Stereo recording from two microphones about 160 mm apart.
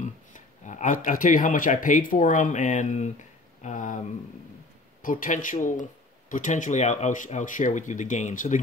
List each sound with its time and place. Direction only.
0.0 s speech: 50° left (ahead or behind)
5.0 s speech: 55° left (ahead or behind)